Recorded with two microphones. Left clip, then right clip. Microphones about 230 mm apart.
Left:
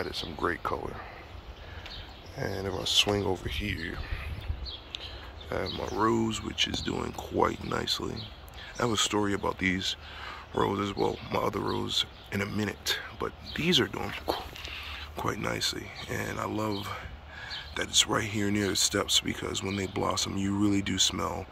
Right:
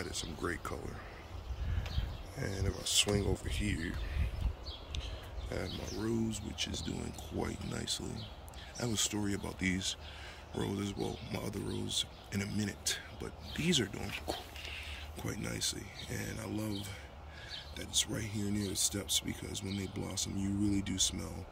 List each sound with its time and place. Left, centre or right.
0.0 s speech: centre
2.3 s speech: centre